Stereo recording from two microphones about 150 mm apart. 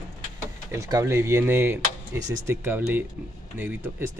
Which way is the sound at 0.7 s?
20° right (ahead or behind).